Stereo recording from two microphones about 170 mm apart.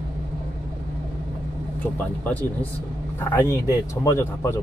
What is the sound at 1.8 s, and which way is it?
Speech, 10° left (ahead or behind).